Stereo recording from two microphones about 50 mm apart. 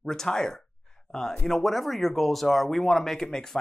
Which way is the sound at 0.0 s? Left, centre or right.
Centre.